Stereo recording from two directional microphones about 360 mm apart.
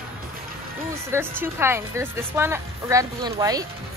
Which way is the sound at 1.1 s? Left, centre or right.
Centre.